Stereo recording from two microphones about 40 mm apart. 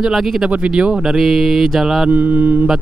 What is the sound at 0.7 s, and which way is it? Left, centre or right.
Speech, right.